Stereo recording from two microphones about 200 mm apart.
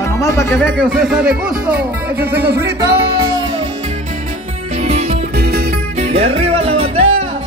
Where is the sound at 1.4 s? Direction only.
5° right (ahead or behind).